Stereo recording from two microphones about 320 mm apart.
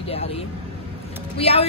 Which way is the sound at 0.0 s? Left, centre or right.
Centre.